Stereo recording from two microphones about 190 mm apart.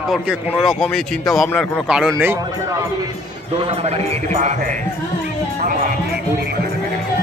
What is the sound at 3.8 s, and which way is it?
Speech, 35° right (ahead or behind).